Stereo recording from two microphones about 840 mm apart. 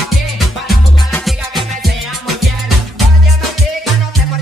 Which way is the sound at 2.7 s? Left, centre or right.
Right.